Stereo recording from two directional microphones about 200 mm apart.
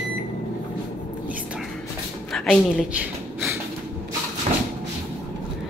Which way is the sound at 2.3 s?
Centre (ahead or behind).